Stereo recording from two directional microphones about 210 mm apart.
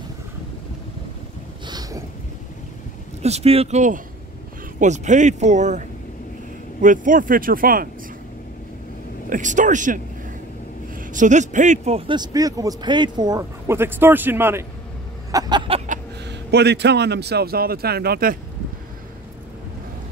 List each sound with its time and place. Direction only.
1.7 s boat: 15° right (ahead or behind)
3.2 s a man's voice: 30° right (ahead or behind)
9.3 s a man's voice: 35° right (ahead or behind)
11.0 s speech: 35° right (ahead or behind); by 14.6 s 10° right (ahead or behind)
15.3 s a sound: 20° right (ahead or behind)
16.3 s a man's voice: 50° right (ahead or behind)